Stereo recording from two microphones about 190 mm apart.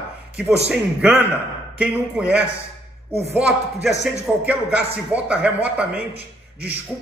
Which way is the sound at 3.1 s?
30° right (ahead or behind).